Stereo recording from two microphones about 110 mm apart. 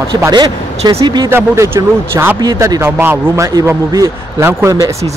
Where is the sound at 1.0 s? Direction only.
40° right (ahead or behind).